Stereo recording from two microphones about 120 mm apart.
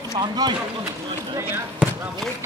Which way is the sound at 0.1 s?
35° right (ahead or behind).